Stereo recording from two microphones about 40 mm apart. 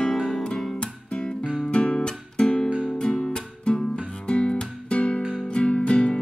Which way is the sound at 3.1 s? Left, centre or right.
Centre.